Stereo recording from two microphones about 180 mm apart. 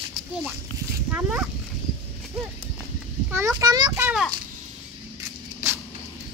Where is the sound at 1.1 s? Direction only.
5° right (ahead or behind).